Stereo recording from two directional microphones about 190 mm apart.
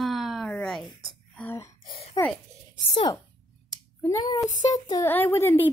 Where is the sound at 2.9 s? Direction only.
25° left (ahead or behind).